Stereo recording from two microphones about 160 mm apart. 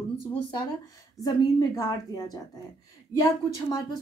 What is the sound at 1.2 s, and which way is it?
A woman's voice, 25° left (ahead or behind).